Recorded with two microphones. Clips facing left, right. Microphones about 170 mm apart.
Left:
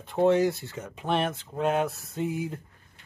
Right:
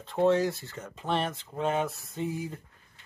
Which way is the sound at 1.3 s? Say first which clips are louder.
Left 3 dB; centre (ahead or behind).